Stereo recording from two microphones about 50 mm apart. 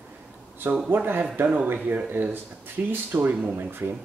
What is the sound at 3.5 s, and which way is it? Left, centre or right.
Speech, right.